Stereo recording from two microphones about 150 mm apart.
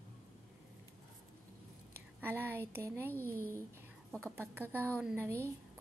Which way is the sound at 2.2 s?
15° right (ahead or behind).